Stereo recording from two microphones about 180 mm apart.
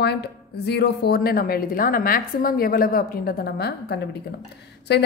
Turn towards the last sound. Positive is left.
turn(degrees=65)  # may be behind; listen again after turning